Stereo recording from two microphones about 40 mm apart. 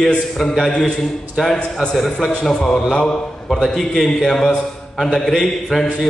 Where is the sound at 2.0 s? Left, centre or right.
Centre.